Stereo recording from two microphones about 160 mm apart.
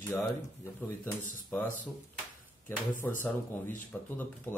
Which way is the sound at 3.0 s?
15° left (ahead or behind).